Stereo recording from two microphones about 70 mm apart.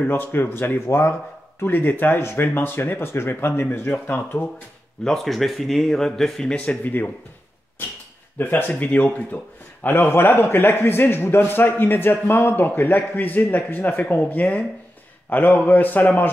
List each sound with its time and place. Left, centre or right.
0.0 s a man's voice: left
1.6 s a man's voice: left
5.0 s speech: centre
6.5 s a man's voice: centre